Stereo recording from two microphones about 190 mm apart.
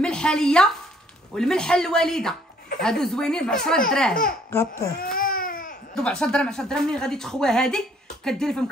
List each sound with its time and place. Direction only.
0.0 s a woman's voice: 5° left (ahead or behind)
4.5 s speech: 15° left (ahead or behind)
4.9 s baby cry: 45° left (ahead or behind)
5.9 s a woman's voice: 5° left (ahead or behind)